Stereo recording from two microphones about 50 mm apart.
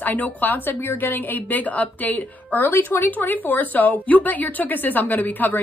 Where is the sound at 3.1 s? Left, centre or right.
Left.